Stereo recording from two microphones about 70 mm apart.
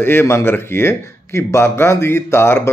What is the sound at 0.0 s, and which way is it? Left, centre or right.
A man's voice, left.